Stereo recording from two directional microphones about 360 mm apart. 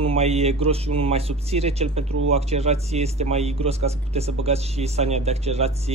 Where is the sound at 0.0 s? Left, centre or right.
Centre.